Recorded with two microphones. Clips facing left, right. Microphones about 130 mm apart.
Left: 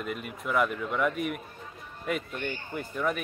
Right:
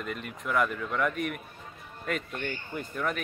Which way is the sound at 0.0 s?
5° left (ahead or behind).